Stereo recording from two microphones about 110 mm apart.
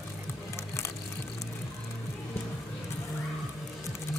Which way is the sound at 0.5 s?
25° left (ahead or behind).